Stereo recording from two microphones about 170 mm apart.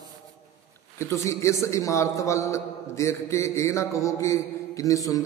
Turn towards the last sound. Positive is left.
turn(degrees=20)  # may be behind; listen again after turning